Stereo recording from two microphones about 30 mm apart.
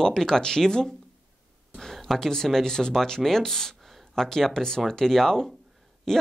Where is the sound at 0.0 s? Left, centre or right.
Centre.